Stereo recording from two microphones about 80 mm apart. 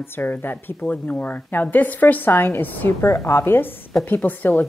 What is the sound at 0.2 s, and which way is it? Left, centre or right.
Speech, left.